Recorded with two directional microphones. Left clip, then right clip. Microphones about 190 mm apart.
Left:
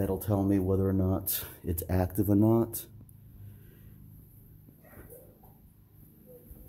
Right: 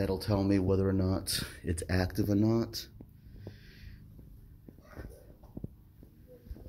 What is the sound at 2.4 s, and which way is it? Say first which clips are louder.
Speech: left 4 dB; 30° left (ahead or behind).